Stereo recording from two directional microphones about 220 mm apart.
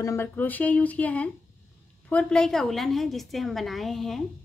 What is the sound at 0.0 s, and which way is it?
A woman's voice, 10° left (ahead or behind).